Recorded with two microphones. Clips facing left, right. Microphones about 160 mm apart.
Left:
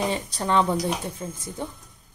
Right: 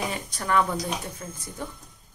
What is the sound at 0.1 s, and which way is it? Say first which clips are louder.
Speech: left 2 dB; 30° left (ahead or behind).